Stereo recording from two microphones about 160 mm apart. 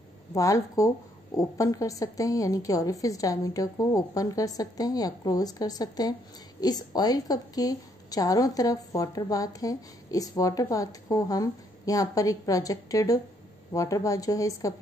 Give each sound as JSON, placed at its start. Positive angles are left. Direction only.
{"t": 0.3, "sound": "a woman's voice", "side_deg": 20}